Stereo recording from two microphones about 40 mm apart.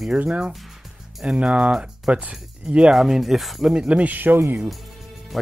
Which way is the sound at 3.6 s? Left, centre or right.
Right.